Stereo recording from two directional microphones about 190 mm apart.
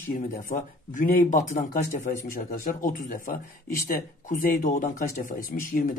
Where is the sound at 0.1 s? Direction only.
45° left (ahead or behind).